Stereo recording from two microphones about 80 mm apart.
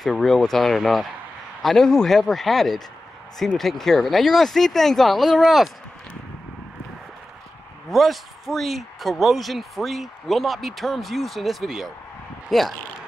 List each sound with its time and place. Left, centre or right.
0.0 s speech: centre
7.9 s speech: centre